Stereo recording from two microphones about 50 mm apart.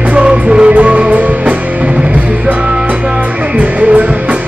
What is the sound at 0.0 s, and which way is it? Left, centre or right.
Music, right.